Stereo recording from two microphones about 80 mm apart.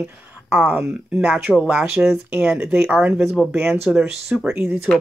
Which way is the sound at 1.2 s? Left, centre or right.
Right.